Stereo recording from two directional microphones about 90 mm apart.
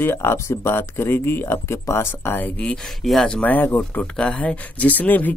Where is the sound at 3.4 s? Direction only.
20° left (ahead or behind).